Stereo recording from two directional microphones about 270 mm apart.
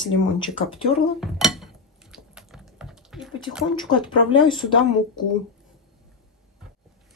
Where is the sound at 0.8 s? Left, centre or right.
Centre.